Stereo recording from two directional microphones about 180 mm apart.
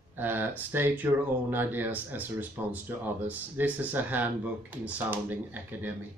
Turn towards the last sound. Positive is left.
turn(degrees=-10)  # may be behind; listen again after turning